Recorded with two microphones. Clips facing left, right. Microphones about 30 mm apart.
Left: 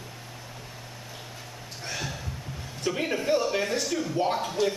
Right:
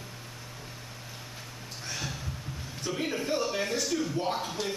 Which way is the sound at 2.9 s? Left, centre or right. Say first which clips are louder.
Left 5 dB; left.